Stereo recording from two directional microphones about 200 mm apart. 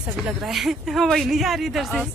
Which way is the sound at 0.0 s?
Centre (ahead or behind).